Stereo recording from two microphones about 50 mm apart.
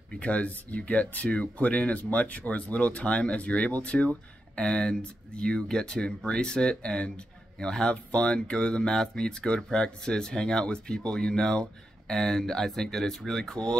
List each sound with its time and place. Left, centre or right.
0.2 s speech: left; by 13.6 s centre